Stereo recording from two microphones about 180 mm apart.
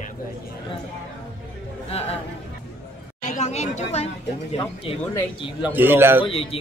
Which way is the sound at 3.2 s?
40° left (ahead or behind).